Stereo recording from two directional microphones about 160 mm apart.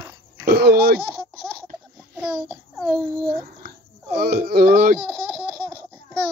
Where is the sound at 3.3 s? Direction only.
70° right (ahead or behind).